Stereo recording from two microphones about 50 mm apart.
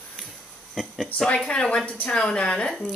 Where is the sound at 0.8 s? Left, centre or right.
Centre.